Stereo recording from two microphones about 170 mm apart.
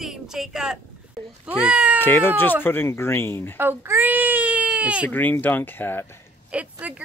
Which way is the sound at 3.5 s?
10° right (ahead or behind).